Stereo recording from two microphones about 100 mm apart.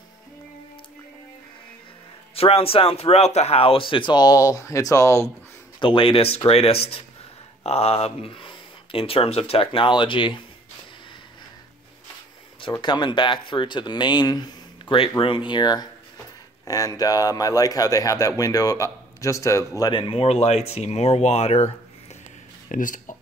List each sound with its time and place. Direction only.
2.3 s speech: 80° left; by 5.2 s 30° left (ahead or behind)
5.8 s speech: 60° left (ahead or behind); by 7.0 s 80° left
7.6 s speech: 90° left; by 10.4 s 55° left (ahead or behind)
12.8 s speech: 50° left (ahead or behind)
15.0 s speech: 60° left (ahead or behind); by 19.6 s 30° left (ahead or behind)
19.7 s speech: 45° left (ahead or behind)
20.2 s speech: 90° left